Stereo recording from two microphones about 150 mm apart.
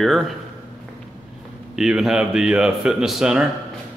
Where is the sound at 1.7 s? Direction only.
5° right (ahead or behind).